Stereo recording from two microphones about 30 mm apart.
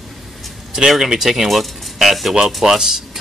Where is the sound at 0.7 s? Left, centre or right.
Centre.